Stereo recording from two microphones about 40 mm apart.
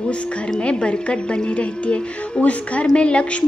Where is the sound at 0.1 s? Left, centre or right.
Left.